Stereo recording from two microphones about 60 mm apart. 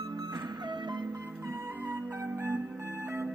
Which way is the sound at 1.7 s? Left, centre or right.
Right.